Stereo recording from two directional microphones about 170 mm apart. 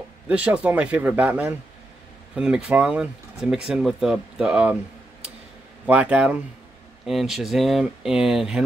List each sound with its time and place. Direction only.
0.3 s speech: 10° right (ahead or behind)
5.9 s speech: 10° right (ahead or behind)